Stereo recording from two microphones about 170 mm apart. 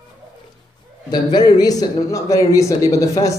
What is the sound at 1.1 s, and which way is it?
Speech, 25° left (ahead or behind).